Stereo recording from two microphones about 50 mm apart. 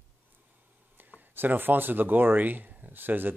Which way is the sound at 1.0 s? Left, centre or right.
Right.